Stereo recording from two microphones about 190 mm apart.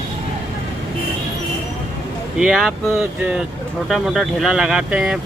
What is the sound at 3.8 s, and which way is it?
Speech, centre (ahead or behind).